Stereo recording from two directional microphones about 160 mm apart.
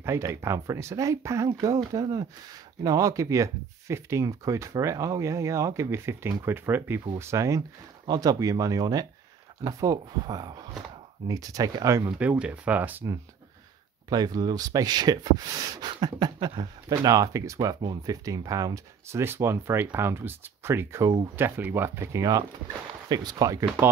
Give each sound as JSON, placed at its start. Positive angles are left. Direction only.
{"t": 0.0, "sound": "speech", "side_deg": -15}
{"t": 12.2, "sound": "speech", "side_deg": -10}